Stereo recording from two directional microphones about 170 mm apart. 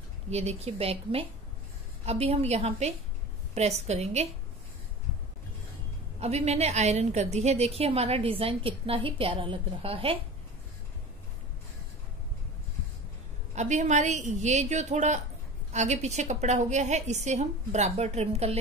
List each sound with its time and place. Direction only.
0.3 s a woman's voice: 40° right (ahead or behind)
6.1 s a woman's voice: 40° right (ahead or behind)
13.6 s a woman's voice: 45° right (ahead or behind)